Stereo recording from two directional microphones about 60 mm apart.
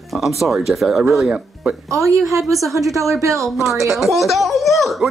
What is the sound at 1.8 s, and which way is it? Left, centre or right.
Speech, right.